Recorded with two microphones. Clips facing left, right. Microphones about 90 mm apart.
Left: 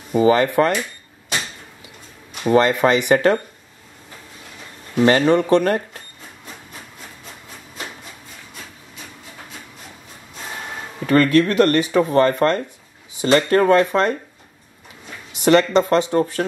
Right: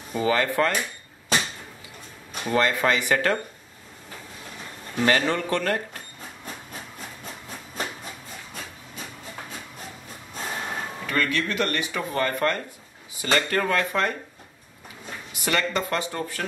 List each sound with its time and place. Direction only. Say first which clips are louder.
0.2 s speech: left 7 dB; 20° left (ahead or behind)
2.4 s speech: left 7 dB; 20° left (ahead or behind)
5.0 s speech: left 8 dB; 25° left (ahead or behind)
11.1 s speech: left 12 dB; 45° left (ahead or behind); by 14.1 s 25° left (ahead or behind)
15.4 s speech: left 11 dB; 25° left (ahead or behind)